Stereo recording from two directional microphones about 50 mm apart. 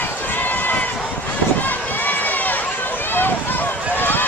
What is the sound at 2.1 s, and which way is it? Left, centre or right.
Run, left.